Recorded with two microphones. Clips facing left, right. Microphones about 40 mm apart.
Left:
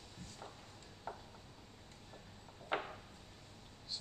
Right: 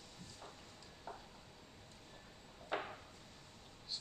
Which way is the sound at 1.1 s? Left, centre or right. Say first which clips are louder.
Left 3 dB; left.